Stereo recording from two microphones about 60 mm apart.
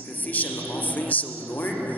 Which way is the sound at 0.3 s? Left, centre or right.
Left.